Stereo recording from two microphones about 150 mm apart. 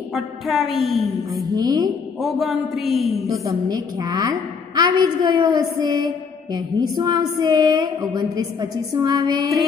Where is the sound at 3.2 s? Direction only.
20° right (ahead or behind).